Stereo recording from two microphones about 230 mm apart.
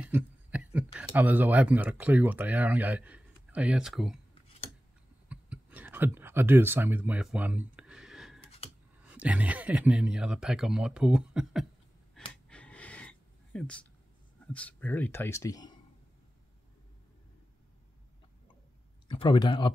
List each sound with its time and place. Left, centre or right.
0.1 s speech: centre
5.3 s a sound: centre
9.1 s speech: centre
12.4 s gasp: centre
14.4 s speech: centre
19.0 s speech: left